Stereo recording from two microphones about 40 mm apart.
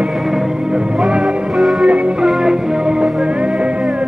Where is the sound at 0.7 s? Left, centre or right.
Right.